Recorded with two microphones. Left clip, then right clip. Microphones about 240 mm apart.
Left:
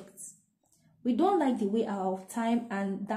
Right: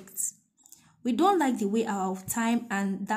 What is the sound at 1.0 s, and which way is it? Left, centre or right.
Speech, right.